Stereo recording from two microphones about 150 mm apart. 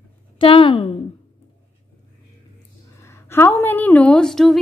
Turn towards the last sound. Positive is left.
turn(degrees=5)  # may be behind; listen again after turning